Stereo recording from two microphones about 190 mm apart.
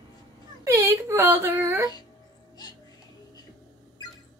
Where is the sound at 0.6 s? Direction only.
15° right (ahead or behind).